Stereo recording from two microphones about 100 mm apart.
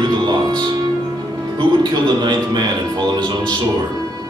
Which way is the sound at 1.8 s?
45° right (ahead or behind).